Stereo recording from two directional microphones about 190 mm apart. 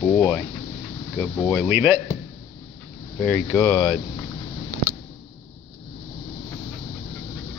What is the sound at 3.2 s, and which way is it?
Speech, 10° left (ahead or behind).